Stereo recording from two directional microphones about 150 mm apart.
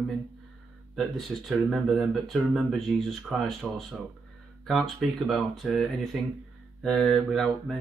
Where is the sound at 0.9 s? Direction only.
Centre (ahead or behind).